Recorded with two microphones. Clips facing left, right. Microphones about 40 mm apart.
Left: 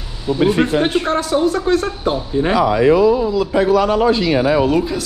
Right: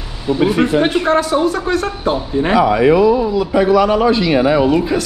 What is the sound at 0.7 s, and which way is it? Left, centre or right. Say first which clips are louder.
Speech: right 3 dB; right.